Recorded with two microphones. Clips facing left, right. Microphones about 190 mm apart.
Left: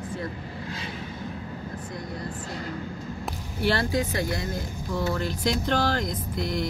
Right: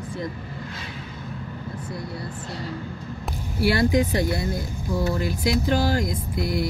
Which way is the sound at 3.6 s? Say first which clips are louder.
Right 5 dB; 10° right (ahead or behind).